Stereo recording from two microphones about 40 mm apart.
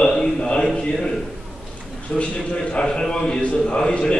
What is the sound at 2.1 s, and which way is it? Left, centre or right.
A man's voice, left.